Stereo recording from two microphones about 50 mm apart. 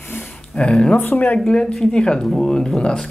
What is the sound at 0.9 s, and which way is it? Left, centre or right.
Speech, left.